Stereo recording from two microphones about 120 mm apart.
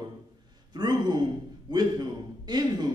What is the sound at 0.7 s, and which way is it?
A man's voice, 35° right (ahead or behind).